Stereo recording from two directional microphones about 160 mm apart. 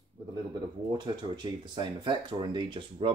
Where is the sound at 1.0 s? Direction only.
25° right (ahead or behind).